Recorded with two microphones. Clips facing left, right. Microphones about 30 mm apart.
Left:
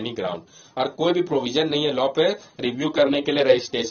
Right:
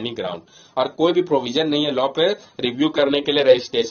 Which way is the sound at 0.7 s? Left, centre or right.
Centre.